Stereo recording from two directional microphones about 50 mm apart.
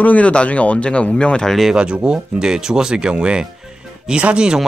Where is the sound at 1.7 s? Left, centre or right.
Centre.